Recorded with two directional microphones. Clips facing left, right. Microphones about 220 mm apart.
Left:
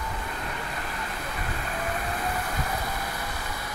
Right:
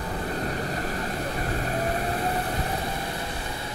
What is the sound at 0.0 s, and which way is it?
Vehicle, 35° right (ahead or behind).